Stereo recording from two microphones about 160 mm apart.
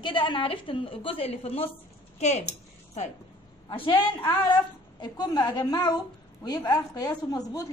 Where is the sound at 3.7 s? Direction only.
30° left (ahead or behind).